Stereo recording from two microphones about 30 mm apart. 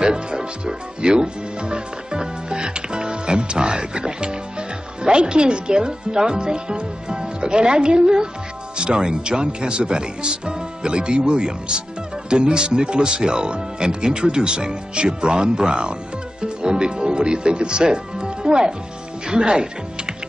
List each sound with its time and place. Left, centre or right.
0.0 s speech: right